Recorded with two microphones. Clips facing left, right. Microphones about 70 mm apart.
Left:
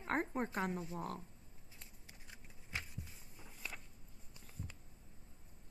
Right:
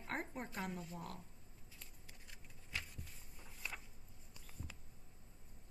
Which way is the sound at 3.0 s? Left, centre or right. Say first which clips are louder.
Left 1 dB; centre.